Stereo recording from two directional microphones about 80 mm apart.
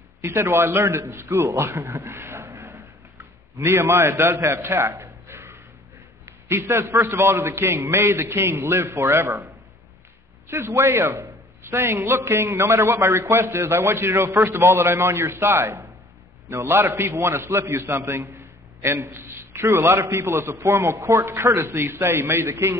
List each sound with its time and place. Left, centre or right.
0.2 s a man's voice: right
10.5 s a man's voice: right